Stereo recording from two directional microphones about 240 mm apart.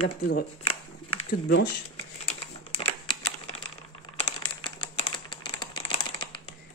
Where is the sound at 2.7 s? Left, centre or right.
Left.